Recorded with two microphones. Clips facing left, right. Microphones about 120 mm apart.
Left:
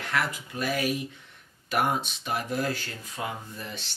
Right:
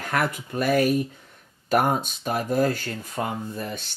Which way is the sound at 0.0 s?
50° right (ahead or behind).